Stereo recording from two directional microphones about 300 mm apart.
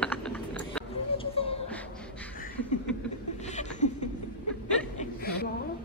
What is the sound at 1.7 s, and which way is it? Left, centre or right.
Music, centre.